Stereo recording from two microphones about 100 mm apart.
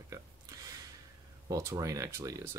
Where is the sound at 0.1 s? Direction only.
35° right (ahead or behind).